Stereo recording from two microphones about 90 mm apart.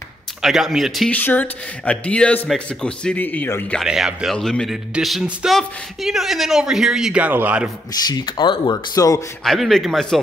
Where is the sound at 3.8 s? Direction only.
5° right (ahead or behind).